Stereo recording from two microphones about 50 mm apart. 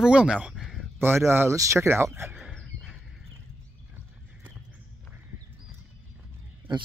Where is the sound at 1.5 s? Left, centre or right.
Right.